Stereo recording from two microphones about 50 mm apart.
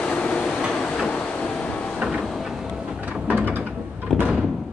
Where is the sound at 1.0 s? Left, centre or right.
Left.